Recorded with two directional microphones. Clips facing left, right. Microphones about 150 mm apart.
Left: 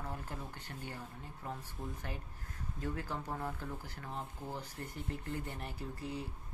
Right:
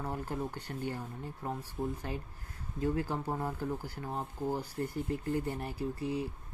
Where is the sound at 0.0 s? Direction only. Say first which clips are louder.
Right 8 dB; 40° right (ahead or behind).